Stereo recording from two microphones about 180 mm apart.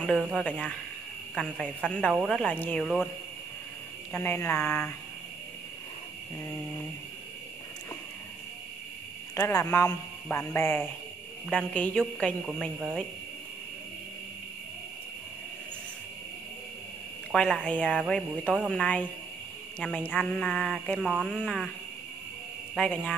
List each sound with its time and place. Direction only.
0.2 s speech: centre (ahead or behind)
4.1 s speech: 10° left (ahead or behind)
9.3 s speech: 15° left (ahead or behind)
17.3 s speech: 5° left (ahead or behind)
22.8 s speech: centre (ahead or behind)